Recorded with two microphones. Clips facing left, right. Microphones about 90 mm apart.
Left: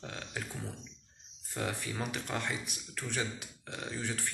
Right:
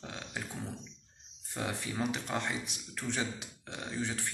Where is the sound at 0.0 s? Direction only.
15° right (ahead or behind).